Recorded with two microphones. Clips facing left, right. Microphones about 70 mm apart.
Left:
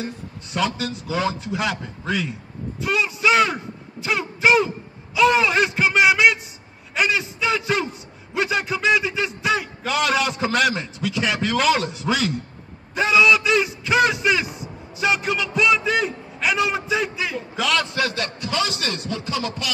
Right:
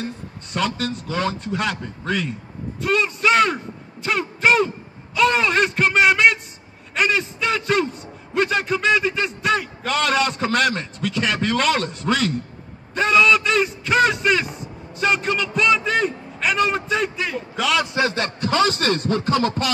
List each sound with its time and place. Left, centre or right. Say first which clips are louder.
0.0 s speech: right 1 dB; centre
2.8 s a sound: right 1 dB; centre
7.0 s a man's voice: right 1 dB; centre
17.8 s speech: right 3 dB; right